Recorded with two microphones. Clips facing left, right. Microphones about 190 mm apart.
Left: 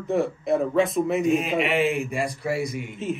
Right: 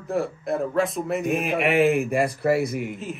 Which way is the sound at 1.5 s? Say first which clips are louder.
Right 3 dB; 55° right (ahead or behind).